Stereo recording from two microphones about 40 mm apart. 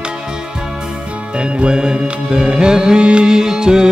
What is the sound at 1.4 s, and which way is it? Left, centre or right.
Music, right.